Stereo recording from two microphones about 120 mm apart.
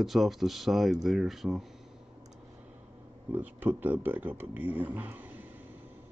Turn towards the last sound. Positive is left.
turn(degrees=-15)  # may be behind; listen again after turning